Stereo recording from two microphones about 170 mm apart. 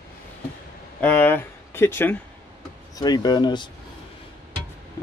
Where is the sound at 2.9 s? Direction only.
25° left (ahead or behind).